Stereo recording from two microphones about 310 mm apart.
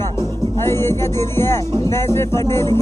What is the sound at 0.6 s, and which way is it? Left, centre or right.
Speech, centre.